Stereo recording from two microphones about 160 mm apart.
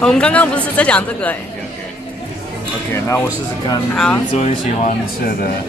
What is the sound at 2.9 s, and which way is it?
Speech, 15° left (ahead or behind).